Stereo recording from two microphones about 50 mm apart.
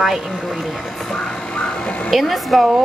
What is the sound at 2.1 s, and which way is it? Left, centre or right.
Speech, centre.